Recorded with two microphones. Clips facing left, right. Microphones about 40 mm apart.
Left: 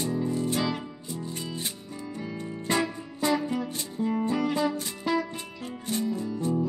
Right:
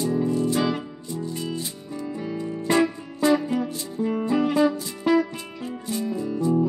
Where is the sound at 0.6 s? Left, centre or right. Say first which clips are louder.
Right 5 dB; centre.